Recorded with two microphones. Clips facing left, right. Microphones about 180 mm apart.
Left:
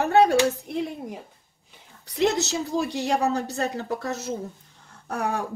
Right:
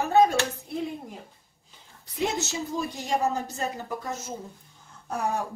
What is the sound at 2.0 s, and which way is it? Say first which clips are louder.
A woman's voice: left 6 dB; 80° left.